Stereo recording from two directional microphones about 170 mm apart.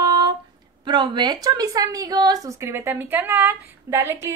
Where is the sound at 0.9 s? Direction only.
25° right (ahead or behind).